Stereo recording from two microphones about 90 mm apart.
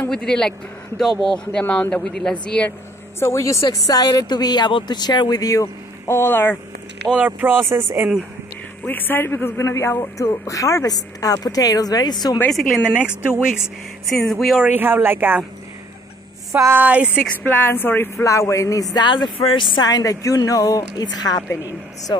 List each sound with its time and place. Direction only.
0.1 s speech: 10° left (ahead or behind)
3.2 s a man's voice: 30° left (ahead or behind)
3.6 s speech: 45° left (ahead or behind); by 6.6 s 25° left (ahead or behind)
7.1 s speech: 15° right (ahead or behind)
8.8 s a man's voice: 20° left (ahead or behind); by 12.4 s 50° left (ahead or behind)
12.8 s speech: 15° right (ahead or behind)
14.2 s speech: centre (ahead or behind)
14.6 s speech: 20° right (ahead or behind)
16.5 s a sound: 30° right (ahead or behind)
16.8 s speech: 15° right (ahead or behind)
17.5 s speech: 20° left (ahead or behind)
18.1 s a man's voice: 35° left (ahead or behind)
19.0 s speech: 60° left (ahead or behind)
19.8 s a man's voice: 40° left (ahead or behind)